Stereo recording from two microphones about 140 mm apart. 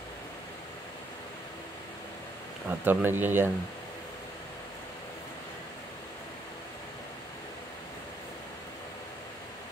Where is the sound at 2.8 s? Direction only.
15° right (ahead or behind).